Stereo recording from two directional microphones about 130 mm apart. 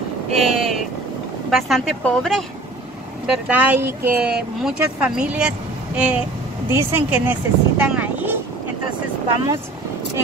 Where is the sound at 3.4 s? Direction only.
10° right (ahead or behind).